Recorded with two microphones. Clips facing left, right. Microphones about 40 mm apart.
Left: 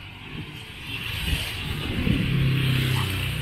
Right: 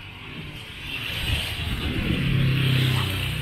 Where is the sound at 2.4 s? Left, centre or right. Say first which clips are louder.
Right 1 dB; right.